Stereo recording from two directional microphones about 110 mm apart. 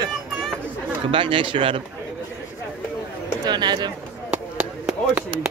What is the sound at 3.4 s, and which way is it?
Speech, 40° right (ahead or behind).